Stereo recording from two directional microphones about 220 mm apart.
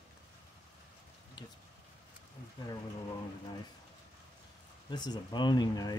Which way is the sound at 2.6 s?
20° left (ahead or behind).